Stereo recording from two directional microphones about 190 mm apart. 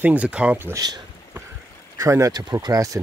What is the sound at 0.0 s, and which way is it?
Speech, 5° right (ahead or behind).